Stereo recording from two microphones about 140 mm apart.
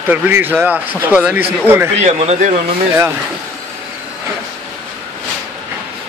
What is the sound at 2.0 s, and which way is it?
Speech, 55° right (ahead or behind).